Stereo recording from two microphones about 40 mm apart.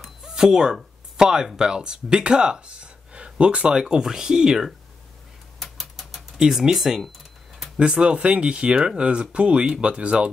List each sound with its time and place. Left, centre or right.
0.2 s a sound: centre
1.1 s speech: centre
3.9 s speech: centre
5.6 s typewriter: centre
6.4 s speech: centre
7.5 s a sound: centre
7.8 s speech: right